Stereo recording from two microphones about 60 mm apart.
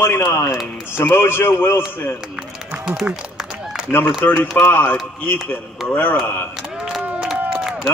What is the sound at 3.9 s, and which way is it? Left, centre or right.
Speech, centre.